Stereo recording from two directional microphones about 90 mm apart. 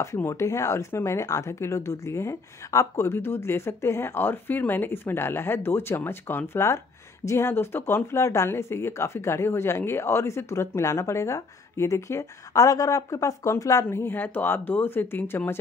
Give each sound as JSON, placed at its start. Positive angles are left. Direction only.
{"t": 0.0, "sound": "a woman's voice", "side_deg": 35}
{"t": 13.8, "sound": "a woman's voice", "side_deg": 25}